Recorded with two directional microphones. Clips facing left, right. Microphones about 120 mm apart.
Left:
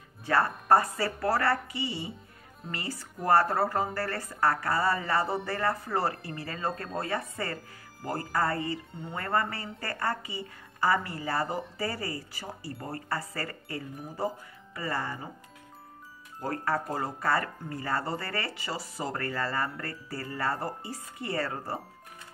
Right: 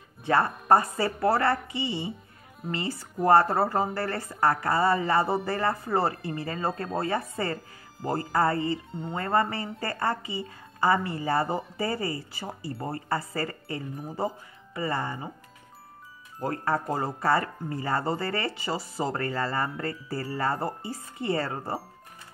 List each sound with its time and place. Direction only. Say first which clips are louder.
0.2 s speech: right 2 dB; 25° right (ahead or behind)
16.3 s speech: right 2 dB; 25° right (ahead or behind)